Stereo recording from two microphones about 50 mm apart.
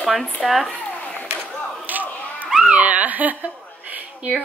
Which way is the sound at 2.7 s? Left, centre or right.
Right.